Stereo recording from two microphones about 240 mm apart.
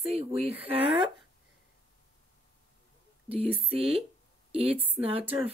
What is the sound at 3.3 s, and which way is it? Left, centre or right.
Speech, right.